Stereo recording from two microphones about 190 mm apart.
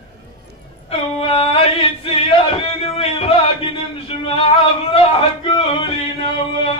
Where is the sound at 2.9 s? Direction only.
30° left (ahead or behind).